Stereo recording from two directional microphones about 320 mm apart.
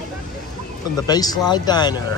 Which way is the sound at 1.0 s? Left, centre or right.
Centre.